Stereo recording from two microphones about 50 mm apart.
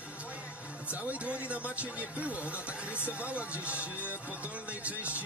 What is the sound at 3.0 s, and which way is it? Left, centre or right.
Speech, right.